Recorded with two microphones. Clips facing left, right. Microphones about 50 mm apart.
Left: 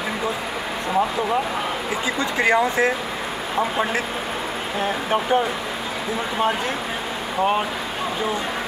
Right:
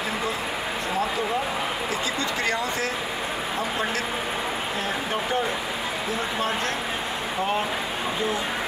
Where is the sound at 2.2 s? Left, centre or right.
Centre.